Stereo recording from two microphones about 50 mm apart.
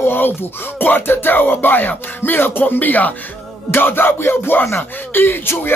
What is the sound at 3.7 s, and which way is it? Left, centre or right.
Music, left.